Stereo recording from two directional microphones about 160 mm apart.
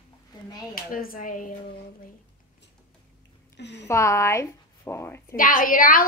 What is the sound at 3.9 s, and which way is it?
Speech, 15° left (ahead or behind).